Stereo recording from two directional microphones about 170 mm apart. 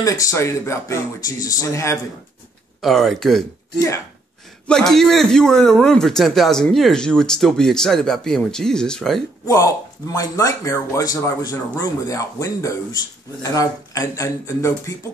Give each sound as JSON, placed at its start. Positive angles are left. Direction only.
{"t": 0.0, "sound": "speech", "side_deg": 20}
{"t": 2.8, "sound": "a man's voice", "side_deg": 0}
{"t": 4.6, "sound": "a man's voice", "side_deg": 5}
{"t": 9.5, "sound": "speech", "side_deg": 20}